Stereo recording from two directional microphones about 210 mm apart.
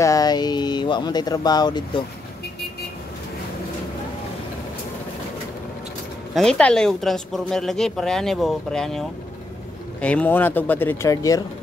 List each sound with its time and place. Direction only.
0.0 s speech: 15° left (ahead or behind)
6.3 s speech: 5° left (ahead or behind)